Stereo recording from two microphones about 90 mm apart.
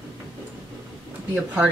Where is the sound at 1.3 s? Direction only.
15° right (ahead or behind).